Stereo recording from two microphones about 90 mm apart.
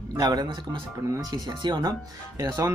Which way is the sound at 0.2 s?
50° right (ahead or behind).